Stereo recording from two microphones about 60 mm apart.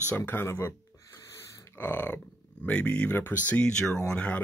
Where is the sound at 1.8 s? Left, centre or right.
Left.